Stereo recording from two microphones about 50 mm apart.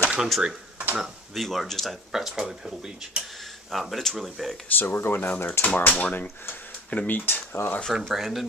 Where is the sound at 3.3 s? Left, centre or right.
Centre.